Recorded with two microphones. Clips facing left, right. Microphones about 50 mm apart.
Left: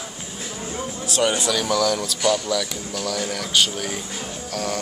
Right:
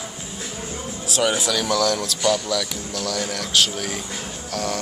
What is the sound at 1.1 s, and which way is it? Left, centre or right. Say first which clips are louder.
Speech: even; centre.